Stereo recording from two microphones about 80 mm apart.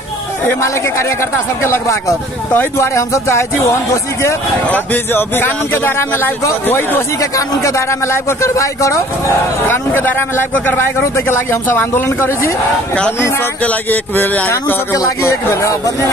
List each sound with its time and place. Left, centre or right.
1.6 s speech: left
4.6 s speech: left
7.2 s speech: left
9.7 s speech: left
13.7 s speech: left
15.0 s speech: left